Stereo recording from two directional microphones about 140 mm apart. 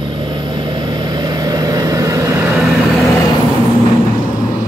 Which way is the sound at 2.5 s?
Centre (ahead or behind).